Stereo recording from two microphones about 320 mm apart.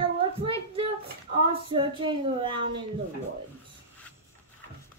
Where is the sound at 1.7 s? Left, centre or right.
Centre.